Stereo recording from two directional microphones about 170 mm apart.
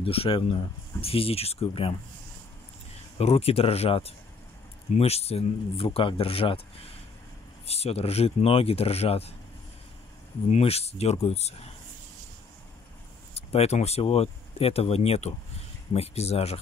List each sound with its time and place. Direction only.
0.0 s speech: 35° left (ahead or behind)
3.2 s speech: 35° left (ahead or behind)
7.6 s speech: 35° left (ahead or behind)
10.5 s speech: 35° left (ahead or behind)
13.3 s speech: 35° left (ahead or behind)